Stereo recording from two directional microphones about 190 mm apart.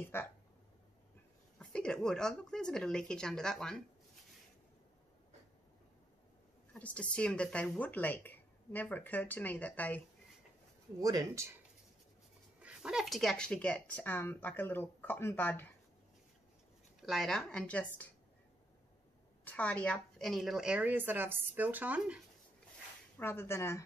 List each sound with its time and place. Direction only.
0.1 s speech: 10° left (ahead or behind)
1.6 s a woman's voice: 5° left (ahead or behind)
6.7 s speech: 5° left (ahead or behind)
11.0 s speech: 20° right (ahead or behind)
12.6 s speech: 5° right (ahead or behind)
17.0 s a woman's voice: centre (ahead or behind)
19.4 s a woman's voice: 5° left (ahead or behind)
23.1 s speech: 10° left (ahead or behind)